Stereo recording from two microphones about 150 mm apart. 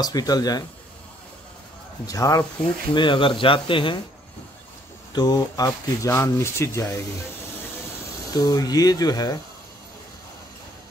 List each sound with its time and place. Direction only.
0.0 s speech: 25° left (ahead or behind)
2.0 s speech: 25° left (ahead or behind)
5.1 s speech: 25° left (ahead or behind)
8.3 s speech: 25° left (ahead or behind)